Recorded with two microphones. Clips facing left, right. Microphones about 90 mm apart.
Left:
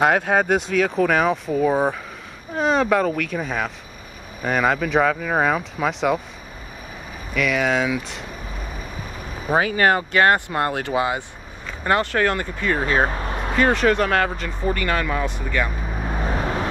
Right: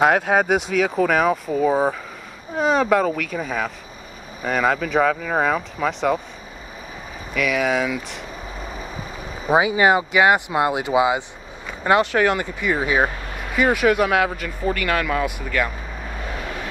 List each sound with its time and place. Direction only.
0.0 s speech: centre (ahead or behind)
7.3 s speech: centre (ahead or behind)
9.5 s speech: 10° right (ahead or behind)
13.2 s vehicle: 40° left (ahead or behind)
13.6 s speech: 10° right (ahead or behind)
14.9 s speech: centre (ahead or behind)
16.2 s vehicle: 35° left (ahead or behind)